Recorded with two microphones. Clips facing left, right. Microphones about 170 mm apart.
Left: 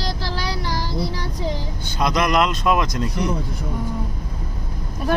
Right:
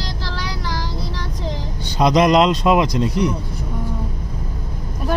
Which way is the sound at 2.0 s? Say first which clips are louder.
Right 6 dB; 20° right (ahead or behind).